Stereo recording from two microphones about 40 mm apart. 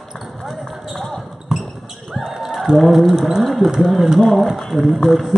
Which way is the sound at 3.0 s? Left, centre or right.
Centre.